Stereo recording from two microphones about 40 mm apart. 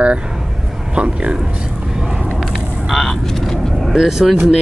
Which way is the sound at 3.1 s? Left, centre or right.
Centre.